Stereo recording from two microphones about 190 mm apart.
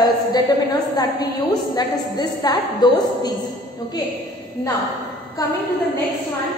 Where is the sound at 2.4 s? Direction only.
20° left (ahead or behind).